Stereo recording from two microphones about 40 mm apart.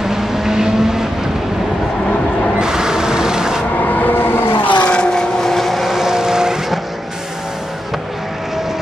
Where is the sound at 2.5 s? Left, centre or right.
Centre.